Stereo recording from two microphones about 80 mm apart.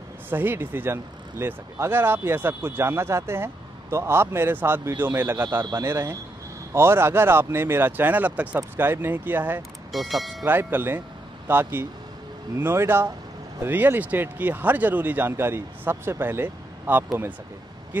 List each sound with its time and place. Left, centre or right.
0.3 s speech: right
9.9 s speech: centre
10.4 s speech: right